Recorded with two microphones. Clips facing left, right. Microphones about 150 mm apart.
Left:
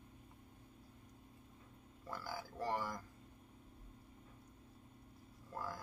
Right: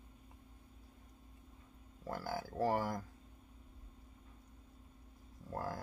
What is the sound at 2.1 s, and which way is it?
Speech, 50° right (ahead or behind).